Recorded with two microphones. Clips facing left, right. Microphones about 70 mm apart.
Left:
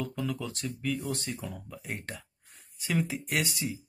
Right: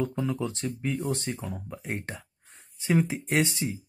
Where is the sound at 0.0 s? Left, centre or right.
Right.